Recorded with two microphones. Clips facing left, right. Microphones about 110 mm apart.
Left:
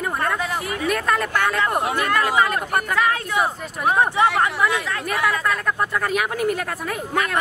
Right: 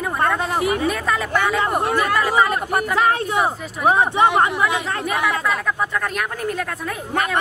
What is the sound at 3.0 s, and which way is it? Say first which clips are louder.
Speech: right 3 dB; 25° right (ahead or behind).